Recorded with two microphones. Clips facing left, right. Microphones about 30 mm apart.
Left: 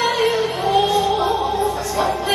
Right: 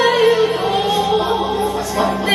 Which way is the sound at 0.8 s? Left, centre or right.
Right.